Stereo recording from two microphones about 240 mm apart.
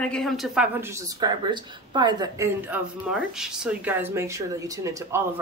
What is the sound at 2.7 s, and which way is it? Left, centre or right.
Speech, centre.